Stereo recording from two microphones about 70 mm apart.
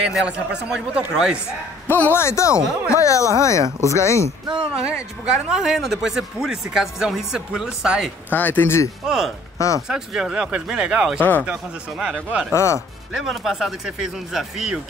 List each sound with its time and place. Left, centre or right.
0.1 s speech: centre
1.9 s speech: left
4.5 s speech: centre
8.3 s speech: left
9.0 s speech: centre
11.1 s speech: left
11.4 s speech: centre
12.5 s speech: left
13.1 s speech: centre